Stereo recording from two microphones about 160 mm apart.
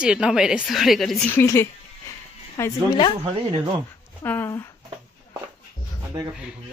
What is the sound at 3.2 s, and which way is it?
Speech, 30° right (ahead or behind).